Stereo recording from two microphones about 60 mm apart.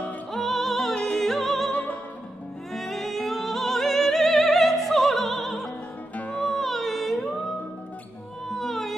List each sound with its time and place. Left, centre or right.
0.3 s music: centre
1.7 s music: left
2.7 s music: centre
8.5 s music: centre